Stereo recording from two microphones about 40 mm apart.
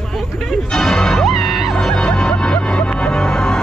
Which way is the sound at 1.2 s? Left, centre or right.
Centre.